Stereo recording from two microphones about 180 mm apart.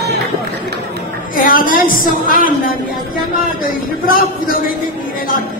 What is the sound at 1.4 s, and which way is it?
Music, 50° left (ahead or behind).